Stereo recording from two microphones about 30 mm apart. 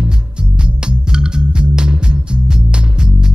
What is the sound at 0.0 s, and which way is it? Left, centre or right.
Music, right.